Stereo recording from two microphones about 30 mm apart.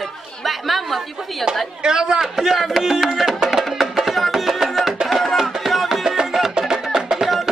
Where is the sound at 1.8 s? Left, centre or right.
Right.